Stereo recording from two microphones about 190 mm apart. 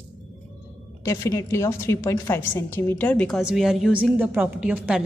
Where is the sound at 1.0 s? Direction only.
15° left (ahead or behind); by 5.0 s 5° right (ahead or behind).